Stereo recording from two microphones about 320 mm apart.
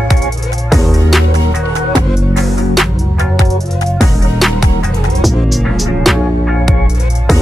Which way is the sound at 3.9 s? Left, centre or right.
Centre.